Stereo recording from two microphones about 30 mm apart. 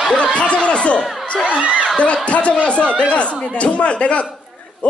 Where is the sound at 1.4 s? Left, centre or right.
Right.